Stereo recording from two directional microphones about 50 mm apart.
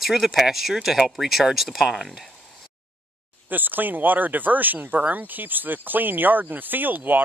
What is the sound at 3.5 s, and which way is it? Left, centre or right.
Speech, right.